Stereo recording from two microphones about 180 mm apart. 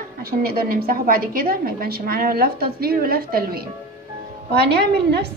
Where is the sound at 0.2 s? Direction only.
55° right (ahead or behind).